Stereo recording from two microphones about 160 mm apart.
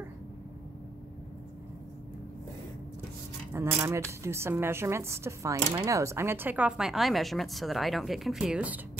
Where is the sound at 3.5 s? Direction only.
15° right (ahead or behind).